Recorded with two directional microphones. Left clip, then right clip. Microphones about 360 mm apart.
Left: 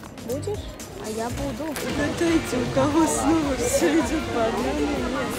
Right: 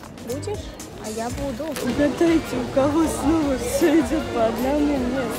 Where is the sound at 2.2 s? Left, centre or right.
Centre.